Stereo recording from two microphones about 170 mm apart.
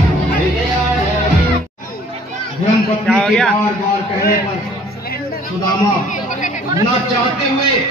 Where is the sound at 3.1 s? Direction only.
5° left (ahead or behind).